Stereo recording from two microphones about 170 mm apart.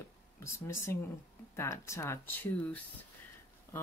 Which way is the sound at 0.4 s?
15° left (ahead or behind).